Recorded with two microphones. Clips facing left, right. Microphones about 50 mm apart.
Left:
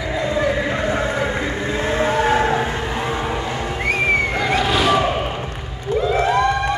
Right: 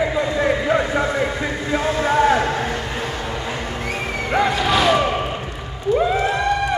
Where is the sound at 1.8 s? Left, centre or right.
Left.